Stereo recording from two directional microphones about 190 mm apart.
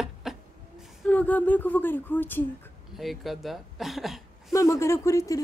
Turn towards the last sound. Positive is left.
turn(degrees=15)  # may be behind; listen again after turning